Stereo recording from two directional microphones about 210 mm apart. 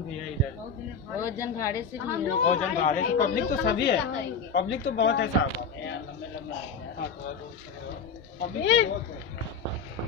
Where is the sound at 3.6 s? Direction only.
55° left (ahead or behind).